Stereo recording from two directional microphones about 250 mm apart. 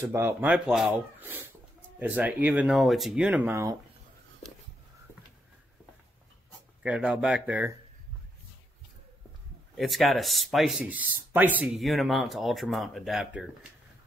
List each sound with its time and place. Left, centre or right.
0.0 s speech: centre
6.8 s speech: centre
9.8 s speech: centre